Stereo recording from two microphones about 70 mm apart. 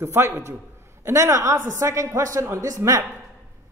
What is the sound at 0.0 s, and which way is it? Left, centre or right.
A man's voice, right.